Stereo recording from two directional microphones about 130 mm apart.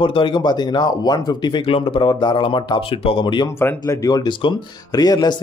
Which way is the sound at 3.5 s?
20° left (ahead or behind).